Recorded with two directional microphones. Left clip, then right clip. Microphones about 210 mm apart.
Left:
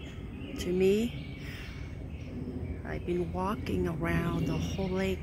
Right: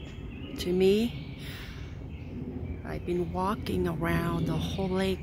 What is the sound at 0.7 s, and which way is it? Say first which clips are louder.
Speech: right 2 dB; 25° right (ahead or behind).